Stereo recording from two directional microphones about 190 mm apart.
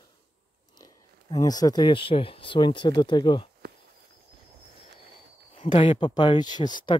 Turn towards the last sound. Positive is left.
turn(degrees=25)  # may be behind; listen again after turning